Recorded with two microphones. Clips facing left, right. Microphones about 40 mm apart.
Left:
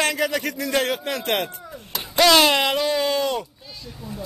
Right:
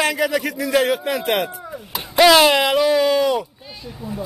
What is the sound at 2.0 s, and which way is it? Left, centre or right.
Speech, centre.